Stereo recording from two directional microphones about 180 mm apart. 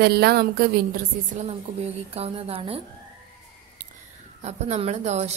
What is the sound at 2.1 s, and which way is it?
Speech, 35° right (ahead or behind).